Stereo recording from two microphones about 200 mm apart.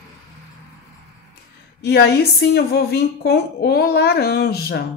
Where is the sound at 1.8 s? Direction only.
55° left (ahead or behind).